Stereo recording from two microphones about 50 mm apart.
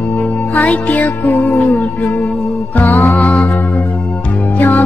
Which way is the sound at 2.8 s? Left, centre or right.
Left.